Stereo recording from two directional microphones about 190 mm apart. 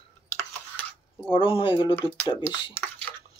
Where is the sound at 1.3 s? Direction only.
25° left (ahead or behind).